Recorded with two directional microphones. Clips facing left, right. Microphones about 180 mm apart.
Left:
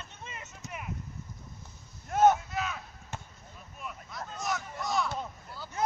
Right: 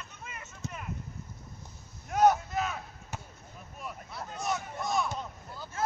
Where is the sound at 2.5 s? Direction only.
45° right (ahead or behind).